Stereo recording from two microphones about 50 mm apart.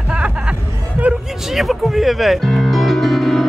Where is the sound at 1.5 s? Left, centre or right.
Centre.